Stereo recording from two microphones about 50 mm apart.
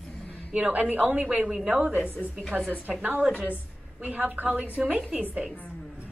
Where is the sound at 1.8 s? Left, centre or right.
Right.